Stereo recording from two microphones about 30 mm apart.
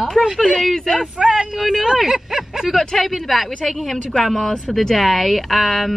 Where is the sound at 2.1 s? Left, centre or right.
Centre.